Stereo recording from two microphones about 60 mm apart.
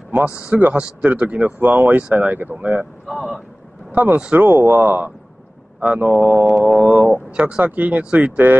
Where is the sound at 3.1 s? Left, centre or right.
Centre.